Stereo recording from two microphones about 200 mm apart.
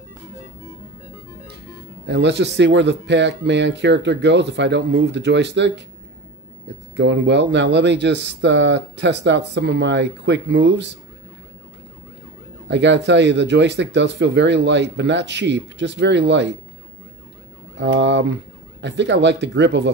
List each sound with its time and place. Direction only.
2.0 s speech: 60° right (ahead or behind)
7.0 s speech: 60° right (ahead or behind)
12.6 s speech: 60° right (ahead or behind)
17.7 s speech: 65° right (ahead or behind)